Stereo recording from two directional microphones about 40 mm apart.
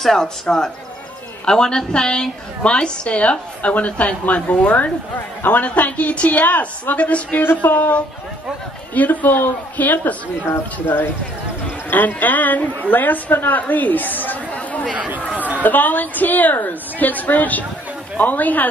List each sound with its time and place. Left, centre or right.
0.0 s a woman's voice: centre; by 7.3 s left
7.4 s a woman's voice: left
10.4 s speech: left
11.9 s a woman's voice: left
15.3 s chatter: right
15.6 s a woman's voice: left